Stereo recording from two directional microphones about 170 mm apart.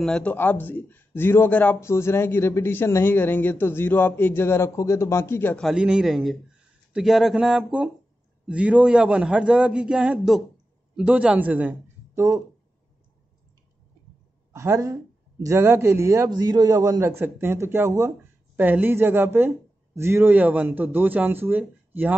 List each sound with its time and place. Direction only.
0.0 s speech: 5° left (ahead or behind)
5.7 s speech: 5° right (ahead or behind)
14.5 s speech: 15° right (ahead or behind)